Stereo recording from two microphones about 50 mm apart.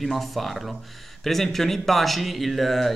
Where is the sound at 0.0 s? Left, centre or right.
Centre.